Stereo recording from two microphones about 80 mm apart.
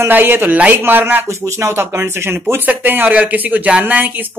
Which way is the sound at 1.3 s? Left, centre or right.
Right.